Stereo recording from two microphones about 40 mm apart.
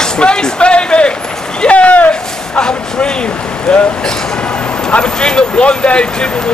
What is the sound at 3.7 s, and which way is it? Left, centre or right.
Speech, left.